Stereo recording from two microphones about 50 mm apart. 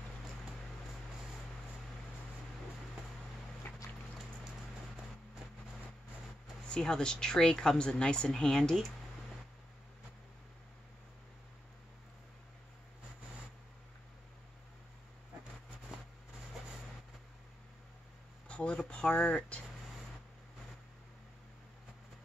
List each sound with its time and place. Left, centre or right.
3.6 s boat: left
6.7 s speech: centre
18.5 s a sound: left